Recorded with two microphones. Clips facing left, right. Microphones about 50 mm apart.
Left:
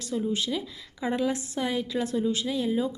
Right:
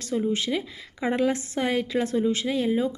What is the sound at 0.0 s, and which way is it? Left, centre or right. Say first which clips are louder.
A woman's voice: right 3 dB; right.